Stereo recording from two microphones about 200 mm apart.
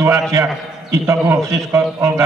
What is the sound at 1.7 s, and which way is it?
Speech, 15° right (ahead or behind).